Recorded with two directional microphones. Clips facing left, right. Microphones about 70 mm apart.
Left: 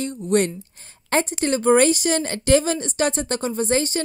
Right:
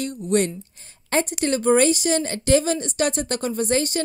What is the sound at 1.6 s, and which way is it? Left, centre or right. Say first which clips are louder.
Speech: left 2 dB; left.